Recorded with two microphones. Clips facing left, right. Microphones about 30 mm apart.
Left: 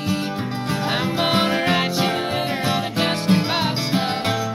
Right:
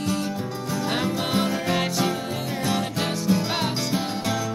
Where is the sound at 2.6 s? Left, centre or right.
Left.